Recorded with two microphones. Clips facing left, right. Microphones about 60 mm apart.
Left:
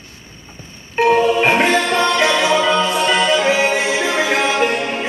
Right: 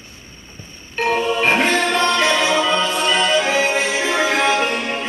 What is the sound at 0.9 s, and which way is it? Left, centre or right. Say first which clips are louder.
Music: left 5 dB; centre.